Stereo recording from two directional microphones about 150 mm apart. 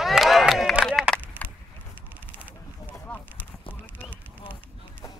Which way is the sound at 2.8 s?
15° left (ahead or behind).